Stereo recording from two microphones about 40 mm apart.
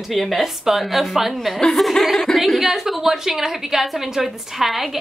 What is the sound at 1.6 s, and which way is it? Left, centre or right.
A woman's voice, centre.